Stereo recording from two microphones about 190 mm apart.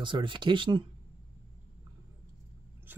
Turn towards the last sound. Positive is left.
turn(degrees=-10)  # may be behind; listen again after turning